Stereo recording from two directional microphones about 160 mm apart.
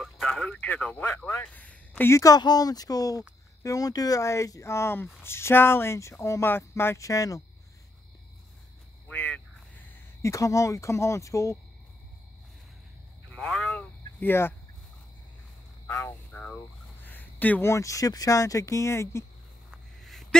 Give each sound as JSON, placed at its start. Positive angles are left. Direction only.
{"t": 0.0, "sound": "speech", "side_deg": 5}
{"t": 9.0, "sound": "a sound", "side_deg": 5}
{"t": 13.3, "sound": "cattle", "side_deg": 5}
{"t": 15.9, "sound": "speech", "side_deg": 20}
{"t": 16.3, "sound": "speech", "side_deg": 10}
{"t": 19.7, "sound": "a sound", "side_deg": 0}